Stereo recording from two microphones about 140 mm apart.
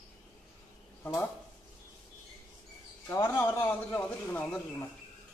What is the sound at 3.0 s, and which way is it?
A man's voice, 20° left (ahead or behind).